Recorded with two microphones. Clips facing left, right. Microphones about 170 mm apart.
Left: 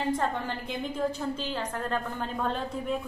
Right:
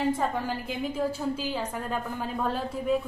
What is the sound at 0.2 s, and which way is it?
A woman's voice, 5° right (ahead or behind).